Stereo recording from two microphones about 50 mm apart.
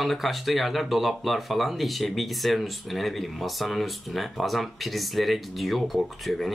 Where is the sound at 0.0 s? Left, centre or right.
Centre.